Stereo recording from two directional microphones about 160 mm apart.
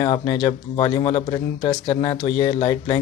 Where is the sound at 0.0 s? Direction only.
30° left (ahead or behind).